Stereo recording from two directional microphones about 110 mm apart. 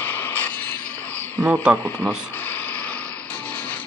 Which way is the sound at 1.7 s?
15° right (ahead or behind).